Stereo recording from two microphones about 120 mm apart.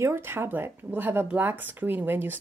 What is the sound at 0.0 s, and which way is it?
A woman's voice, 20° right (ahead or behind).